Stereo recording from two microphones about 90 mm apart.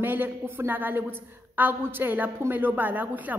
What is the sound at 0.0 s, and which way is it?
A woman's voice, 20° right (ahead or behind).